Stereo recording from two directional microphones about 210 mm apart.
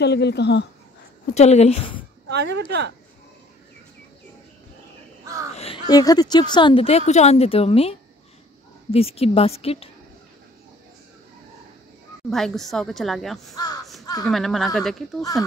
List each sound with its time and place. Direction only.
0.0 s speech: 55° left (ahead or behind)
1.3 s speech: 30° left (ahead or behind)
2.2 s speech: 55° right (ahead or behind)
5.2 s crow: 15° right (ahead or behind)
5.5 s crow: 30° left (ahead or behind)
5.9 s speech: 20° left (ahead or behind)
12.3 s a woman's voice: centre (ahead or behind)
14.0 s a sound: 20° left (ahead or behind)
14.3 s a woman's voice: centre (ahead or behind)